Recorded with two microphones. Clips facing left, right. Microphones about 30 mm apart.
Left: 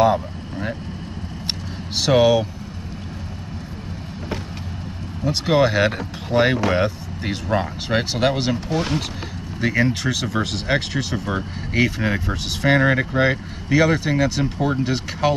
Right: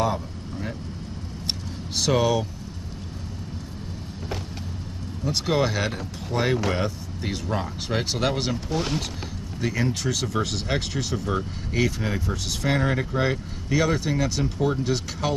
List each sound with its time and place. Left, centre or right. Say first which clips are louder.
0.0 s vehicle: left 8 dB; left
2.0 s speech: left 6 dB; left
5.2 s speech: left 6 dB; centre
9.6 s speech: left 6 dB; left
10.3 s speech: left 4 dB; centre